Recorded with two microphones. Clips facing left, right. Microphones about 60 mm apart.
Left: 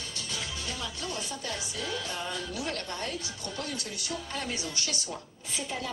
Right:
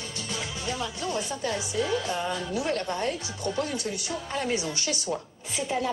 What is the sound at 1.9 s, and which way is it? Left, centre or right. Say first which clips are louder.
Speech: right 7 dB; right.